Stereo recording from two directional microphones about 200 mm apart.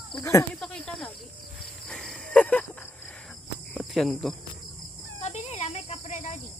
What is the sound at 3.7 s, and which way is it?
Speech, centre (ahead or behind).